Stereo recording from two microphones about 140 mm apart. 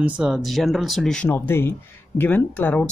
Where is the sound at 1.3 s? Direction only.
15° left (ahead or behind).